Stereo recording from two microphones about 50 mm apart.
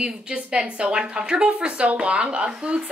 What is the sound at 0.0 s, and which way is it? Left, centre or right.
A woman's voice, centre.